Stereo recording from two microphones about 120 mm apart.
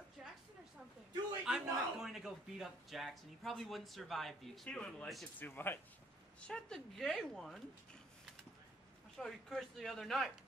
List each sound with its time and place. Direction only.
1.4 s a man's voice: 5° right (ahead or behind)
5.4 s speech: 15° left (ahead or behind)
6.4 s a man's voice: 5° left (ahead or behind)
9.2 s a man's voice: 5° left (ahead or behind)